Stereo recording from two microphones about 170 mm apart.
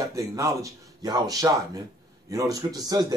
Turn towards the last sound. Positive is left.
turn(degrees=-25)  # may be behind; listen again after turning